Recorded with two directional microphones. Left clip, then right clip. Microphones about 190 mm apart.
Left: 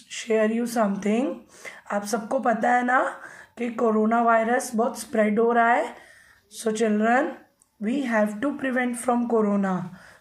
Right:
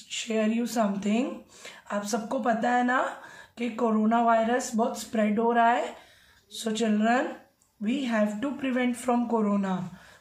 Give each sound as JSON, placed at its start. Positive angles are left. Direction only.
{"t": 0.2, "sound": "a woman's voice", "side_deg": 25}